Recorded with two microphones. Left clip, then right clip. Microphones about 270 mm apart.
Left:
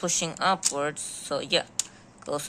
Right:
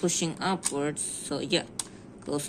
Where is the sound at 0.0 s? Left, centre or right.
Left.